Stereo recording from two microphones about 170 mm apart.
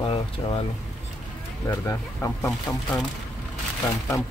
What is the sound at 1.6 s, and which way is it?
Speech, 15° left (ahead or behind).